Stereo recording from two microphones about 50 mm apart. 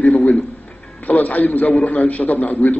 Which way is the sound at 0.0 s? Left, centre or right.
Left.